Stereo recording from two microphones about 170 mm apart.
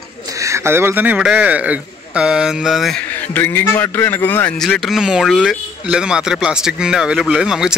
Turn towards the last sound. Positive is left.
turn(degrees=-5)  # may be behind; listen again after turning